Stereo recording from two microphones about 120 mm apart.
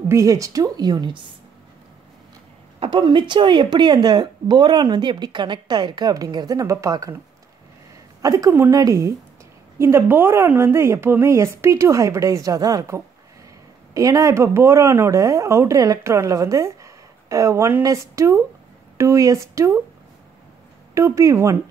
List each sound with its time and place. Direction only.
0.1 s speech: 25° right (ahead or behind)
2.8 s speech: 40° right (ahead or behind); by 7.2 s 25° right (ahead or behind)
8.2 s speech: 30° right (ahead or behind)
13.9 s speech: 25° right (ahead or behind)
20.9 s speech: 25° right (ahead or behind)